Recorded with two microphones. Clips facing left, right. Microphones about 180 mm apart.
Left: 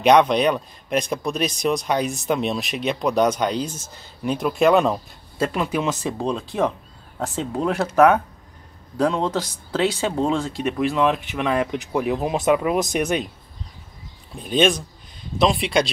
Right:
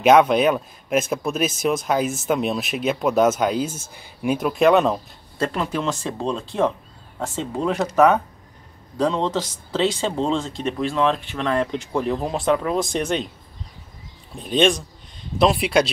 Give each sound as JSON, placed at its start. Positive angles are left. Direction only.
{"t": 0.0, "sound": "a man's voice", "side_deg": -5}
{"t": 14.3, "sound": "a man's voice", "side_deg": 5}